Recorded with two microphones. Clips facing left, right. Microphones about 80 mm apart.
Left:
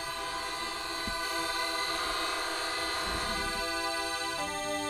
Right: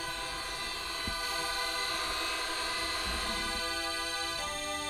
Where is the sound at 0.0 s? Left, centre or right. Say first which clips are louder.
Left 3 dB; left.